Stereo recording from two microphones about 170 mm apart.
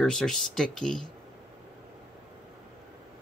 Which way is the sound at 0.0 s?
Centre (ahead or behind).